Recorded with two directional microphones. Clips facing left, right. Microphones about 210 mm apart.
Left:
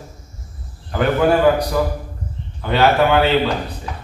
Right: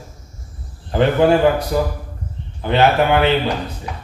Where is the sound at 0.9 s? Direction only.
25° right (ahead or behind).